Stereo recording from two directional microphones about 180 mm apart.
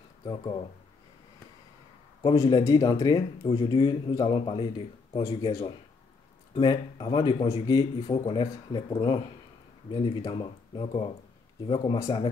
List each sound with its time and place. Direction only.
0.2 s speech: 25° left (ahead or behind)
2.2 s speech: 20° left (ahead or behind)